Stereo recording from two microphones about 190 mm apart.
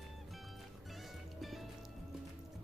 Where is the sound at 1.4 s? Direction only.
Centre (ahead or behind).